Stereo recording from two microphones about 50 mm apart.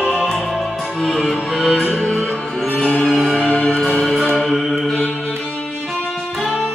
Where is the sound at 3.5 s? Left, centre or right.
Left.